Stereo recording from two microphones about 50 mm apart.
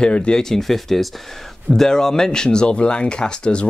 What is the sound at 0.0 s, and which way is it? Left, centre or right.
Speech, centre.